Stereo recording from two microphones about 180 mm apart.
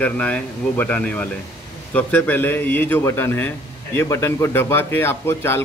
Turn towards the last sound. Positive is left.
turn(degrees=15)  # may be behind; listen again after turning